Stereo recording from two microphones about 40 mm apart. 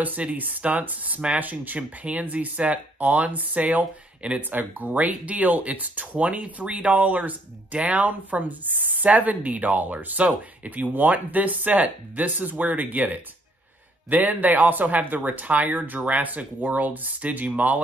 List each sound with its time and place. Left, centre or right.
0.2 s speech: right
4.4 s speech: right